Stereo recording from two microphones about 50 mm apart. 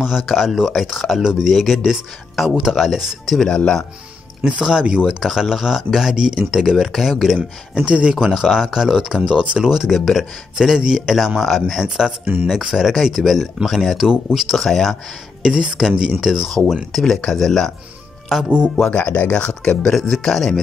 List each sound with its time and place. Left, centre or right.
0.0 s speech: centre
2.4 s speech: centre
3.3 s speech: centre
4.5 s speech: centre
6.1 s speech: centre
7.7 s speech: right
8.3 s speech: centre
9.2 s speech: right
9.7 s speech: centre
10.5 s speech: centre
15.4 s speech: centre
16.4 s speech: centre
18.9 s speech: left
19.9 s speech: centre